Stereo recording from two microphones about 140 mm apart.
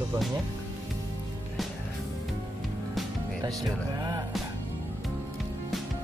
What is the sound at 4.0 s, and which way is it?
Music, 30° right (ahead or behind).